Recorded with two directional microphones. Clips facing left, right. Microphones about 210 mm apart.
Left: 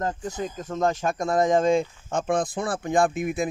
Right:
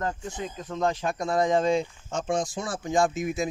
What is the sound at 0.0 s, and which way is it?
Speech, 45° left (ahead or behind).